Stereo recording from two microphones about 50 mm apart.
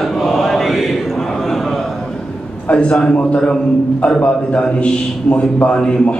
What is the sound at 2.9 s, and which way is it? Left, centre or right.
A man's voice, centre.